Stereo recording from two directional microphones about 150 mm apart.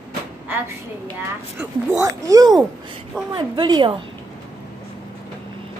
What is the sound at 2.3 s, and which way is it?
Speech, 25° right (ahead or behind).